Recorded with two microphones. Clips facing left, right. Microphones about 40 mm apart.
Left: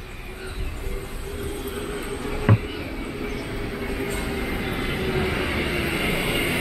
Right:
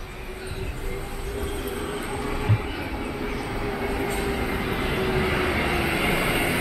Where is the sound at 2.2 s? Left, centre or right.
Centre.